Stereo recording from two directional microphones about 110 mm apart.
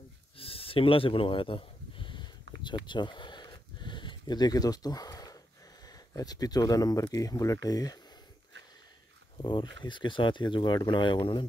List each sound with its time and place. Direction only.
0.4 s a sound: 60° left (ahead or behind); by 5.4 s 35° left (ahead or behind)
5.9 s speech: 35° left (ahead or behind)
9.4 s speech: 45° left (ahead or behind)